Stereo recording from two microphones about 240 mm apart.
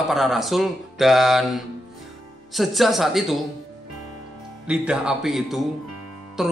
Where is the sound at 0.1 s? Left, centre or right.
Centre.